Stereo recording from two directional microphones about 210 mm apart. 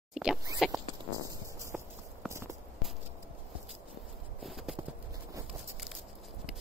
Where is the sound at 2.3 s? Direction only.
15° right (ahead or behind).